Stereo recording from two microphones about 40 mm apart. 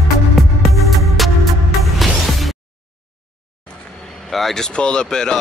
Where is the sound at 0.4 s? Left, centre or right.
Centre.